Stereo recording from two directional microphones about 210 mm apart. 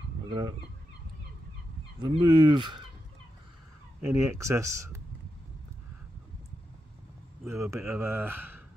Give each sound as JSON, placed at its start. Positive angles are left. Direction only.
{"t": 0.3, "sound": "speech", "side_deg": -20}
{"t": 2.0, "sound": "speech", "side_deg": -20}
{"t": 4.1, "sound": "speech", "side_deg": -10}
{"t": 7.4, "sound": "speech", "side_deg": 0}